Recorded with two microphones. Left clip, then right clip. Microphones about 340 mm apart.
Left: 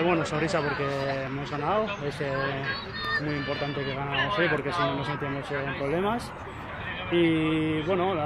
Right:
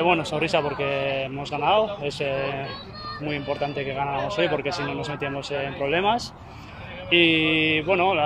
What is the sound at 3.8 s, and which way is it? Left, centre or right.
Mantra, right.